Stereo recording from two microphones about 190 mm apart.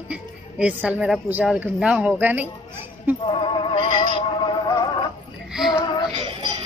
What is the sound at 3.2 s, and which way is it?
Music, 25° left (ahead or behind).